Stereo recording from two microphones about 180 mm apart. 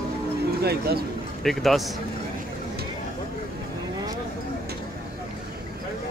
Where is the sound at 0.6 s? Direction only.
60° right (ahead or behind).